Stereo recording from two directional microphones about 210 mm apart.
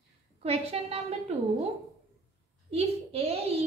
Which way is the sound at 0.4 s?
30° right (ahead or behind).